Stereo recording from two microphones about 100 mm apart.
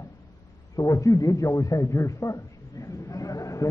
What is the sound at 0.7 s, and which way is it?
A man's voice, 35° left (ahead or behind).